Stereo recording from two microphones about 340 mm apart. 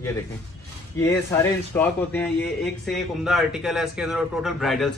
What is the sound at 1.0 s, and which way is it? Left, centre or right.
A man's voice, centre.